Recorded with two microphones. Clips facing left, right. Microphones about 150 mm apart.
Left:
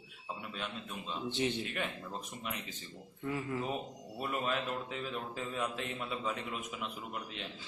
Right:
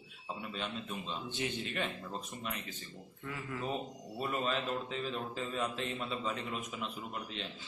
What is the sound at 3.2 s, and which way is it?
Speech, 25° left (ahead or behind).